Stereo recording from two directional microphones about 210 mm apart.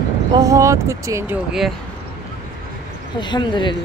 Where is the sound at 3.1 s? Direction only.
20° left (ahead or behind).